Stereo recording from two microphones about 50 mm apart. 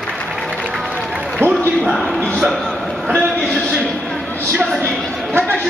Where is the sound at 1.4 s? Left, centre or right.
Right.